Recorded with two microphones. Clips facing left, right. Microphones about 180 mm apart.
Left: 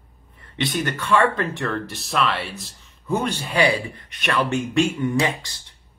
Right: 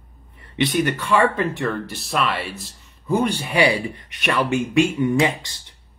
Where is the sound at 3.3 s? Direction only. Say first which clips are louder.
Right 1 dB; 15° right (ahead or behind).